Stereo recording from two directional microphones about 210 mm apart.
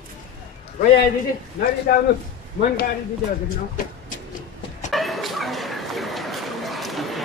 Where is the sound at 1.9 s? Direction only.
50° left (ahead or behind).